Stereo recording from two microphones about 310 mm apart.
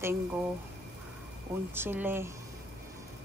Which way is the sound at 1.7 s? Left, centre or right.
Centre.